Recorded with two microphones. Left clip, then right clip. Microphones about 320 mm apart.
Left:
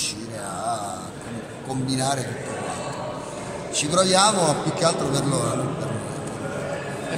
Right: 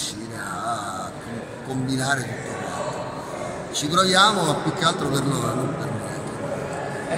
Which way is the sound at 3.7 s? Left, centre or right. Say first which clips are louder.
Right 1 dB; centre.